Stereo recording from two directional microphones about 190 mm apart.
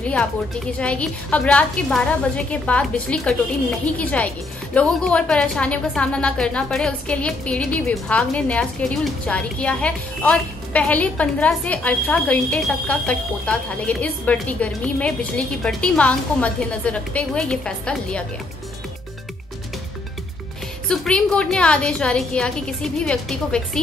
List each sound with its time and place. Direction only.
0.0 s a woman's voice: 5° left (ahead or behind)
20.9 s a woman's voice: 5° left (ahead or behind)